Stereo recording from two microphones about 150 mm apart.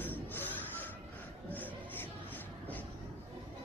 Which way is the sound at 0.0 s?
10° left (ahead or behind).